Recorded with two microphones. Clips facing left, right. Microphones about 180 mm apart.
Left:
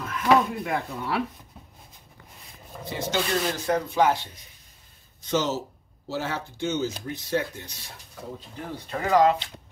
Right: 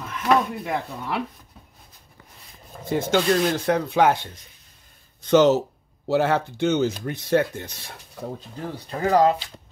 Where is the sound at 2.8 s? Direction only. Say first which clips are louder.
Right 7 dB; 50° right (ahead or behind).